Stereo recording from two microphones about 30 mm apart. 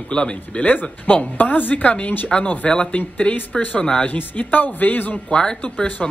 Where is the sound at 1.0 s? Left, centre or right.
Left.